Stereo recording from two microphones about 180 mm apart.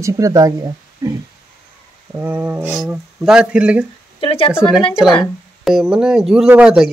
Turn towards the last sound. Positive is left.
turn(degrees=-5)  # may be behind; listen again after turning